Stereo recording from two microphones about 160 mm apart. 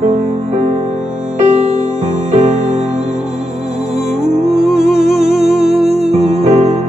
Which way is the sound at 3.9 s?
5° right (ahead or behind).